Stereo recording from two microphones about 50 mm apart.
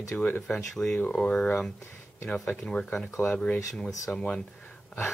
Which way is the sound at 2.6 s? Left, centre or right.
Centre.